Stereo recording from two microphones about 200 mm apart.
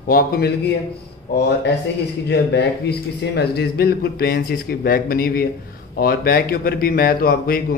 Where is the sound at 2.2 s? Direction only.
55° left (ahead or behind).